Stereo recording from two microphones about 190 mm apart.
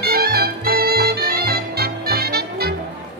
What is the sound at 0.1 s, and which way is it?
Music, 55° right (ahead or behind).